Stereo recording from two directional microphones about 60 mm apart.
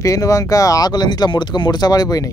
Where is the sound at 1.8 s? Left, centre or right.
Left.